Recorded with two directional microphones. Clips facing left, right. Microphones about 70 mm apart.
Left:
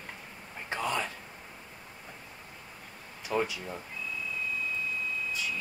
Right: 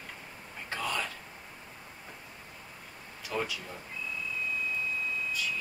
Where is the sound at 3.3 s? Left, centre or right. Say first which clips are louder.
Left 4 dB; left.